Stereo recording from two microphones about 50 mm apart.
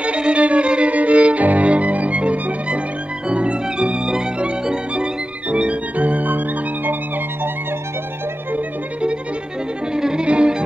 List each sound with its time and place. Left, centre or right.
0.0 s violin: right
9.9 s violin: centre